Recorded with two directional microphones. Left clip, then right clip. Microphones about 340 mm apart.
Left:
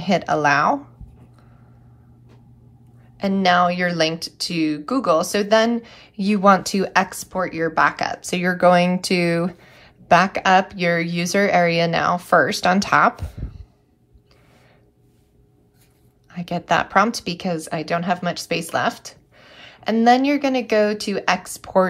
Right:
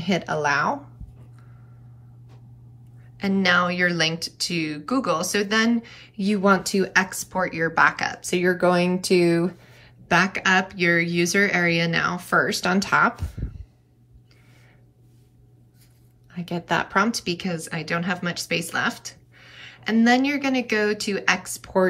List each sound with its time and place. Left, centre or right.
0.0 s speech: centre
3.2 s a woman's voice: centre
16.3 s a woman's voice: centre